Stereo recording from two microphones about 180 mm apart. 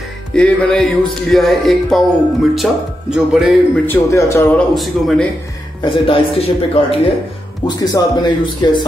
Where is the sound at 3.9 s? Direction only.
15° left (ahead or behind).